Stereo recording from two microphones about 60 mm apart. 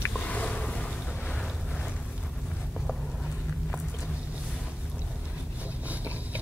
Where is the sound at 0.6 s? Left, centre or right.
Centre.